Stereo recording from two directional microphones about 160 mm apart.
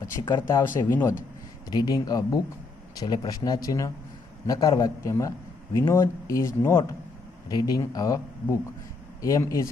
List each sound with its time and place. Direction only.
0.0 s a man's voice: 25° left (ahead or behind)